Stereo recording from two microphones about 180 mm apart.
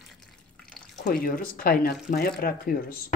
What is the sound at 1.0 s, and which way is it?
Speech, 55° left (ahead or behind).